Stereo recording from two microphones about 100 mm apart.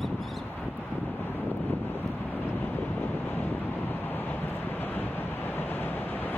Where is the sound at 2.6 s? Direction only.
20° left (ahead or behind).